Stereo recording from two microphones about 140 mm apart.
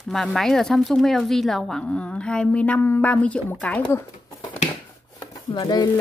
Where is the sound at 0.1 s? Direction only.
Centre (ahead or behind).